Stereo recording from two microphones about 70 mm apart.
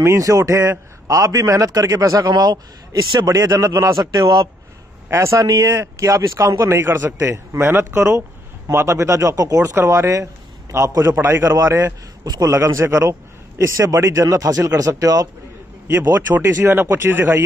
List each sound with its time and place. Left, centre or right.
0.1 s a man's voice: right
3.5 s a man's voice: right
5.1 s speech: right
6.7 s speech: right
10.2 s a sound: right
11.1 s speech: right
11.4 s speech: right
12.6 s speech: right
16.2 s speech: right